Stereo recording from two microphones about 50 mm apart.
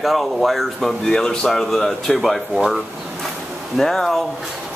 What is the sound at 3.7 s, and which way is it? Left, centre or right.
Speech, centre.